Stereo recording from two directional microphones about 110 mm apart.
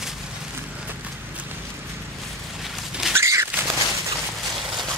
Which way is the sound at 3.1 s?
25° right (ahead or behind).